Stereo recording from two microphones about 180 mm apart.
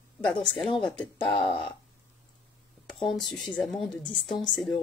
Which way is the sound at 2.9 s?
Centre (ahead or behind).